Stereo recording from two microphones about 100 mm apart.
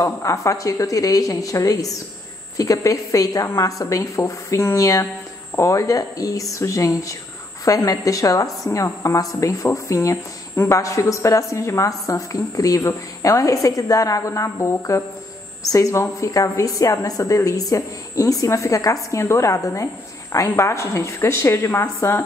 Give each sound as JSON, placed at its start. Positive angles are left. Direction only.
{"t": 0.0, "sound": "a woman's voice", "side_deg": 30}